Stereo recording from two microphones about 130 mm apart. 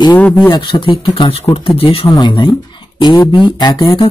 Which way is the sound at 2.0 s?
30° left (ahead or behind).